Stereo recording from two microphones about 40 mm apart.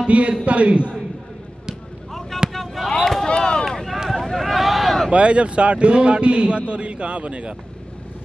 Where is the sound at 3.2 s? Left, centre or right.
Centre.